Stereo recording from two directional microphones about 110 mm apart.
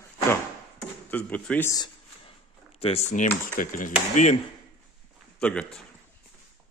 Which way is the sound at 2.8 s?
65° left (ahead or behind).